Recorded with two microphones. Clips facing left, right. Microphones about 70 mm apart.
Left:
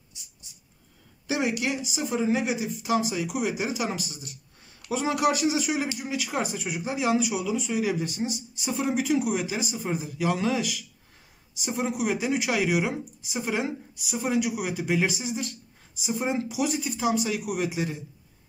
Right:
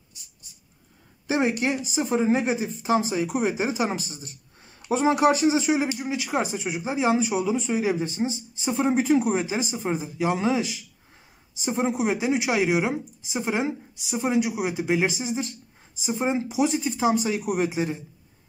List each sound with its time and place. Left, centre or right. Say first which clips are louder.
1.2 s speech: right 3 dB; right